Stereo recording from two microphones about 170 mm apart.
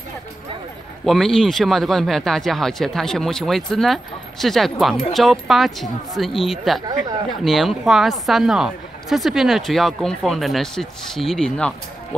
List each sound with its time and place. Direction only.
1.0 s speech: centre (ahead or behind)